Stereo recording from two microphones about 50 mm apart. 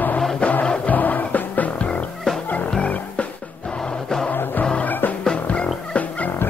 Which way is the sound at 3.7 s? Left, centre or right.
Centre.